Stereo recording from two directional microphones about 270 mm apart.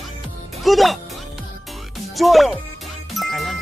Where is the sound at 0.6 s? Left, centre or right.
Centre.